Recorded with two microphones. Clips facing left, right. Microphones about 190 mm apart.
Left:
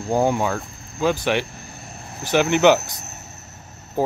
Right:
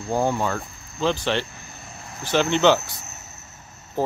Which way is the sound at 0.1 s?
15° left (ahead or behind).